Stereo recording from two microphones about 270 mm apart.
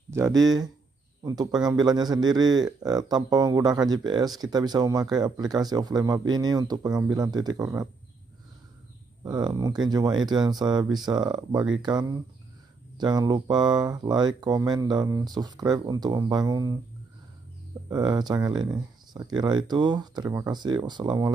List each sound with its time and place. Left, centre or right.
0.4 s speech: centre
9.2 s speech: centre
17.8 s speech: centre